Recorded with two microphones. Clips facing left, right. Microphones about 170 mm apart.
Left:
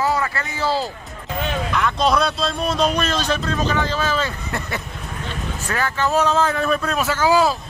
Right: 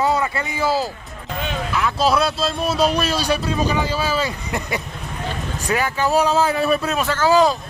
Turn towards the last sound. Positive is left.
turn(degrees=10)  # may be behind; listen again after turning